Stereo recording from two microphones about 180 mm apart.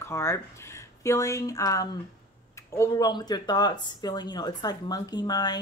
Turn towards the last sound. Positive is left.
turn(degrees=20)  # may be behind; listen again after turning